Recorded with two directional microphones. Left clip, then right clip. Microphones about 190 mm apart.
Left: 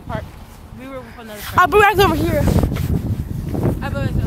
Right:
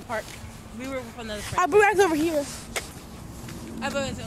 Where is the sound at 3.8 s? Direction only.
10° left (ahead or behind).